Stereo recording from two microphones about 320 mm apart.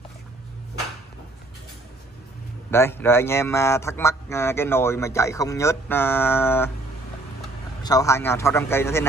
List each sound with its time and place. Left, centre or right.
2.7 s speech: centre
7.8 s speech: centre